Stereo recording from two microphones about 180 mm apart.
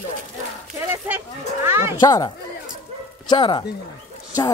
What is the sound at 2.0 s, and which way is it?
Speech, 20° left (ahead or behind).